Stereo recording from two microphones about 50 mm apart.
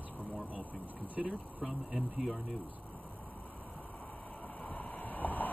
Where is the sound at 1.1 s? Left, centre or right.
Right.